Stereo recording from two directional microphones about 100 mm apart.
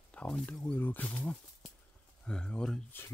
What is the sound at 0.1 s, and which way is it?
Speech, 10° left (ahead or behind).